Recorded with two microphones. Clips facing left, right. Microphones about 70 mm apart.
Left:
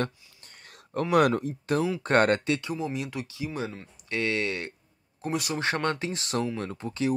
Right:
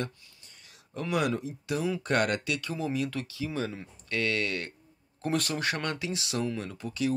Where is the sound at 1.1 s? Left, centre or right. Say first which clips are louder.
Left 7 dB; left.